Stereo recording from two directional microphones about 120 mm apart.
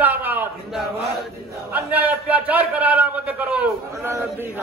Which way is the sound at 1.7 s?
15° right (ahead or behind).